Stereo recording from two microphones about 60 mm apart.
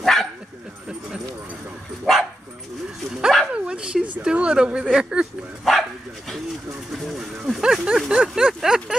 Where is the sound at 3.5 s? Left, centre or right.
Centre.